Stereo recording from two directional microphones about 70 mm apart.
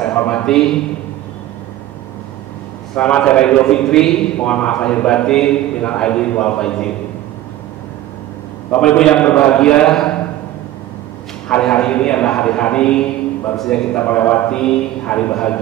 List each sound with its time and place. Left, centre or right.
0.3 s a man's voice: centre
3.0 s a man's voice: centre
8.7 s a man's voice: centre
11.4 s a man's voice: centre
13.9 s a man's voice: left